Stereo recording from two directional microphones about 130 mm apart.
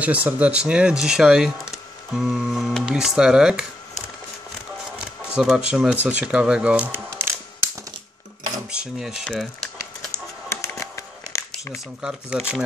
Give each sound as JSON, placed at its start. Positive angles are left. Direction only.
{"t": 0.0, "sound": "speech", "side_deg": -10}
{"t": 5.3, "sound": "speech", "side_deg": -5}
{"t": 8.6, "sound": "speech", "side_deg": -5}
{"t": 10.8, "sound": "a sound", "side_deg": 25}
{"t": 12.0, "sound": "speech", "side_deg": -5}